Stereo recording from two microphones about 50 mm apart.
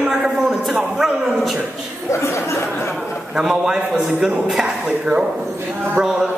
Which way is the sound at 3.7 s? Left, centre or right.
Centre.